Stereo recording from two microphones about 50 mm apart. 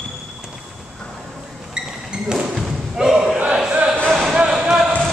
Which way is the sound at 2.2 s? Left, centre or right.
Centre.